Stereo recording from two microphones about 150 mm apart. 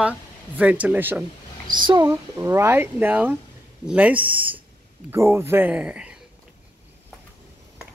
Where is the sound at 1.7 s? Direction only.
30° right (ahead or behind).